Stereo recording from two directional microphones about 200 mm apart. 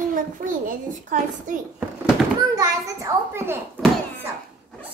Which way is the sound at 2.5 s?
15° right (ahead or behind).